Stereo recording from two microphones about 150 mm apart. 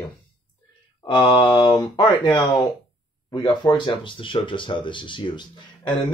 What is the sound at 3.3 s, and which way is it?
Speech, 30° left (ahead or behind).